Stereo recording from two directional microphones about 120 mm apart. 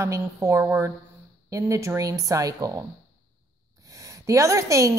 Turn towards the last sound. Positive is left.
turn(degrees=-25)  # may be behind; listen again after turning